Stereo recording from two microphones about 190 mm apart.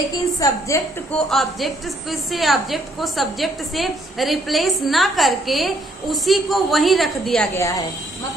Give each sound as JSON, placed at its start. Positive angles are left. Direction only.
{"t": 0.4, "sound": "a woman's voice", "side_deg": 15}
{"t": 1.3, "sound": "a woman's voice", "side_deg": 0}
{"t": 7.5, "sound": "a woman's voice", "side_deg": 15}